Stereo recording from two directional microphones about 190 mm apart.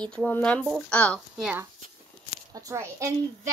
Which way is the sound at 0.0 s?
5° left (ahead or behind).